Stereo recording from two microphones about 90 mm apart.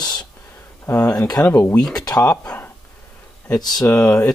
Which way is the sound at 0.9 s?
35° left (ahead or behind).